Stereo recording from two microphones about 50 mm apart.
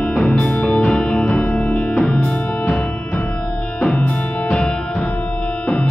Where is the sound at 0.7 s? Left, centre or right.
Centre.